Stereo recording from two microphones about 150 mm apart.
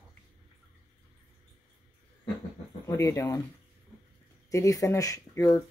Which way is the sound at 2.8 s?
20° left (ahead or behind).